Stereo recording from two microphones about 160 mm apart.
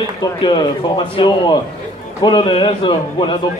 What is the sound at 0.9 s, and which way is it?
Speech, 30° left (ahead or behind).